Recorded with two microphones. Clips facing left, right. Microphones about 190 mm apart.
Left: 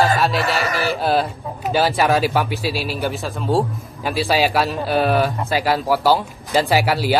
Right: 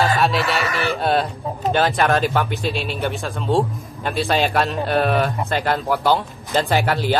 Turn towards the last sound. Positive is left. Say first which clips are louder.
# left 2 dB
turn(degrees=10)  # may be behind; listen again after turning